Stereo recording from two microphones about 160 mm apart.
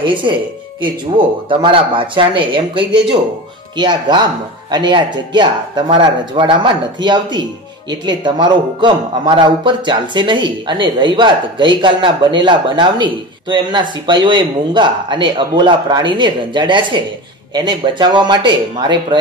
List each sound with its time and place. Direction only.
0.0 s a man's voice: 30° right (ahead or behind)